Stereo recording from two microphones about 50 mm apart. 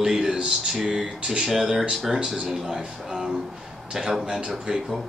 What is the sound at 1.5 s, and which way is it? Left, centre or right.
Speech, centre.